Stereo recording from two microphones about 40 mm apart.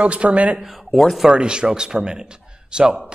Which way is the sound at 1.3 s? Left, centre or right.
Right.